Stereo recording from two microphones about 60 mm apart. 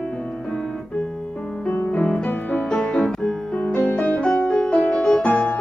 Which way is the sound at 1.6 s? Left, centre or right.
Left.